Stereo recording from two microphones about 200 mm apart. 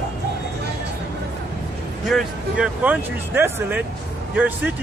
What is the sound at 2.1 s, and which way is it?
Speech, centre (ahead or behind).